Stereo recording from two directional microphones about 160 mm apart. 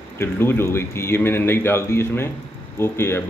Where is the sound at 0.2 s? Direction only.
15° left (ahead or behind).